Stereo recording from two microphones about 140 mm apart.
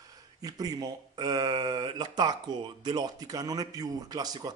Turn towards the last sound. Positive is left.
turn(degrees=-30)  # may be behind; listen again after turning